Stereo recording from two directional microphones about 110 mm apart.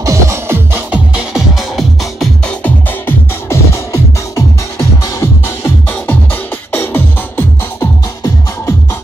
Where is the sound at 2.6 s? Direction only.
20° left (ahead or behind).